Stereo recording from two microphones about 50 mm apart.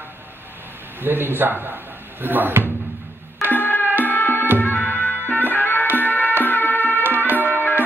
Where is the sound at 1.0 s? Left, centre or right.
Right.